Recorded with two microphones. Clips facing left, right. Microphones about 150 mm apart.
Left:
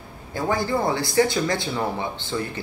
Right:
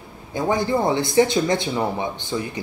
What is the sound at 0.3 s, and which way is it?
Speech, 20° right (ahead or behind).